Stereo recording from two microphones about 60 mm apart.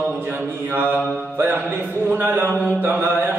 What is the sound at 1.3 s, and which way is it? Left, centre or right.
Music, right.